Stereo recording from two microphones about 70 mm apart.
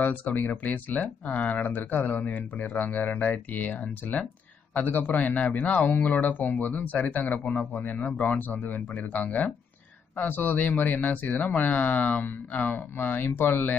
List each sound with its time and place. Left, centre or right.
0.0 s speech: left